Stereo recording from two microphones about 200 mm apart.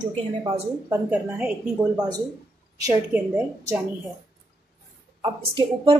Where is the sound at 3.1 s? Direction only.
10° right (ahead or behind).